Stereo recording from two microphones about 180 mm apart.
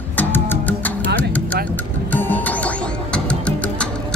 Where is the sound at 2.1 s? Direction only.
10° left (ahead or behind).